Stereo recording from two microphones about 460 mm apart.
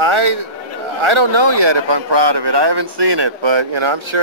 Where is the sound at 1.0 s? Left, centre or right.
Right.